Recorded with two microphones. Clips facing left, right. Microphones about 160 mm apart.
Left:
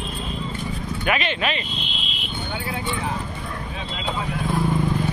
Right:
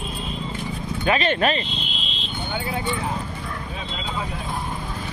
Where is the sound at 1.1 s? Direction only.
40° right (ahead or behind).